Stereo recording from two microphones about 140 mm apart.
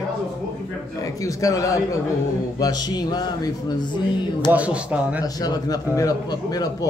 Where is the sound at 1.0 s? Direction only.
25° left (ahead or behind).